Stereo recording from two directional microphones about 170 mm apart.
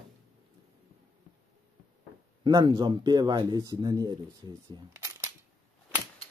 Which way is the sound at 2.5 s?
25° right (ahead or behind).